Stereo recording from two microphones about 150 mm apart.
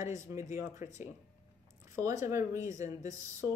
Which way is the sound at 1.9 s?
20° right (ahead or behind).